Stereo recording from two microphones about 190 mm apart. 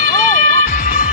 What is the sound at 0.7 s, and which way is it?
Music, 45° left (ahead or behind).